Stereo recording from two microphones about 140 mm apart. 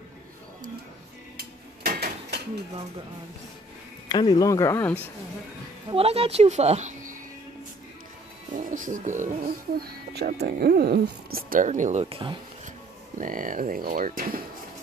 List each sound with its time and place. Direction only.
4.1 s speech: 30° left (ahead or behind)
5.9 s a woman's voice: 45° right (ahead or behind); by 7.2 s 65° right (ahead or behind)
8.5 s speech: 70° right (ahead or behind)
12.0 s speech: 40° right (ahead or behind)
13.2 s speech: 70° right (ahead or behind)